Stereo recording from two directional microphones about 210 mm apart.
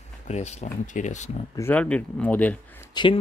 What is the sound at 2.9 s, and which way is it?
Speech, 20° left (ahead or behind).